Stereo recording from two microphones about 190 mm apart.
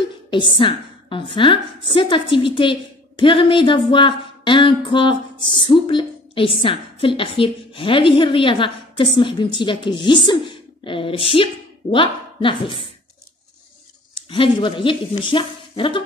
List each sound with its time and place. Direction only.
0.3 s a woman's voice: 25° left (ahead or behind)
14.3 s a woman's voice: 25° left (ahead or behind)